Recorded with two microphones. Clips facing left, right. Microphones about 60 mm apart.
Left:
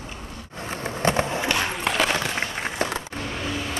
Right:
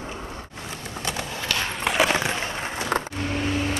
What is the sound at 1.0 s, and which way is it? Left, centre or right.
Skateboard, left.